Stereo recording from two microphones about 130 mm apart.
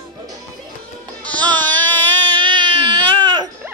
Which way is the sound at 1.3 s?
10° left (ahead or behind).